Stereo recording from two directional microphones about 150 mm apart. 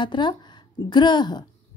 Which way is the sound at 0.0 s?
30° left (ahead or behind).